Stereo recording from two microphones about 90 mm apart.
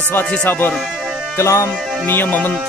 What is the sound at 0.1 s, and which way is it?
Speech, 20° left (ahead or behind).